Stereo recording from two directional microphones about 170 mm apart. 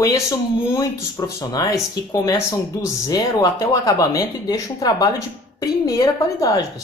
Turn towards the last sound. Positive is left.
turn(degrees=20)  # may be behind; listen again after turning